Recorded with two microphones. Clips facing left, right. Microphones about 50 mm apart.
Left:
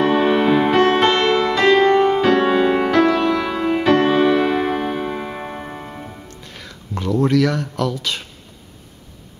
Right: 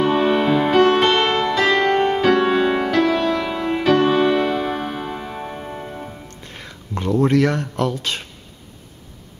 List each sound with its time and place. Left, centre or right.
0.2 s music: centre
1.1 s music: centre
2.4 s music: centre
4.6 s music: centre
6.4 s music: centre
7.0 s speech: centre